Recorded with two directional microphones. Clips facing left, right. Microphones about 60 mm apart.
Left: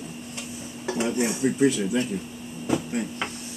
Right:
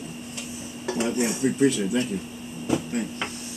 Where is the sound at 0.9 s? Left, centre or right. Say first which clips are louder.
Even; centre.